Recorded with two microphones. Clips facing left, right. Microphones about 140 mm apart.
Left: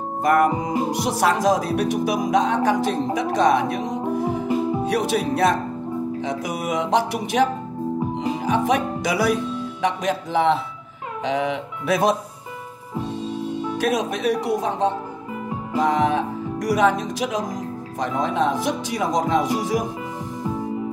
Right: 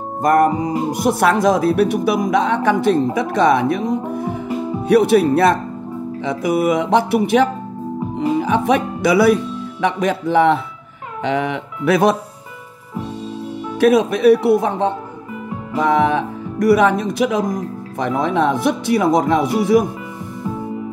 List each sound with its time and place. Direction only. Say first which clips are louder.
0.2 s music: right 4 dB; 40° right (ahead or behind)
0.9 s speech: right 7 dB; 55° right (ahead or behind)
13.7 s speech: right 11 dB; 60° right (ahead or behind)